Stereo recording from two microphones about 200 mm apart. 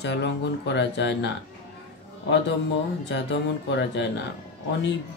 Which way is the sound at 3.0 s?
60° left (ahead or behind).